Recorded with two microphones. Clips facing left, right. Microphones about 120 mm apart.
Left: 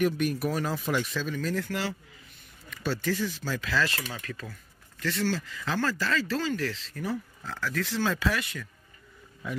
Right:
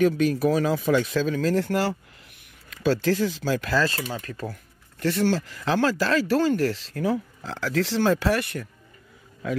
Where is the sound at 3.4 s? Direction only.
80° right.